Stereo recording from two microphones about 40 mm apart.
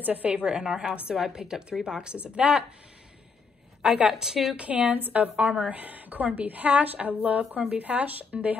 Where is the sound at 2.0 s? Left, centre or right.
Right.